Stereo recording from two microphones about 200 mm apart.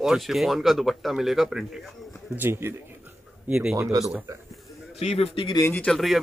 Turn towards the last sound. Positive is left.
turn(degrees=0)  # may be behind; listen again after turning